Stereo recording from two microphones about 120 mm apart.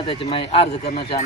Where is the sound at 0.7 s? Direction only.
70° left (ahead or behind).